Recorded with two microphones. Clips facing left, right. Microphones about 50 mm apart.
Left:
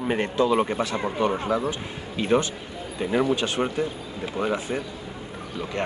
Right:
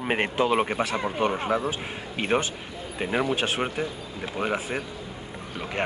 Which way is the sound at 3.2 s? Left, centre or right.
Centre.